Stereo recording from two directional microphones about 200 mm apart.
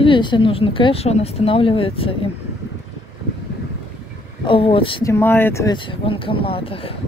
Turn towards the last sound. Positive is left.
turn(degrees=25)  # may be behind; listen again after turning